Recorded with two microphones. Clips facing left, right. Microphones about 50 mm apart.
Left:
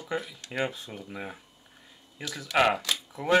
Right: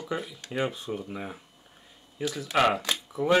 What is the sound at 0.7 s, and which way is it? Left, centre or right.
Speech, right.